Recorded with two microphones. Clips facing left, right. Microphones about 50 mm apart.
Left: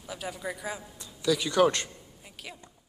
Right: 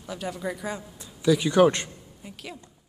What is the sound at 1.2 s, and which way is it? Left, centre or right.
Speech, right.